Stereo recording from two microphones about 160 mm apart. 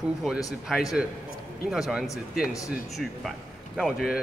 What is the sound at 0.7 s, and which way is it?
Speech, centre (ahead or behind).